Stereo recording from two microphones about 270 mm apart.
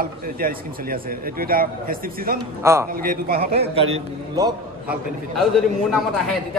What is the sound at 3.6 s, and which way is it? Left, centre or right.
A man's voice, right.